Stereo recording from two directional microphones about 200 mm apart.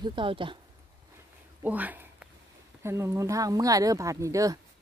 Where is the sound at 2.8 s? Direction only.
15° right (ahead or behind).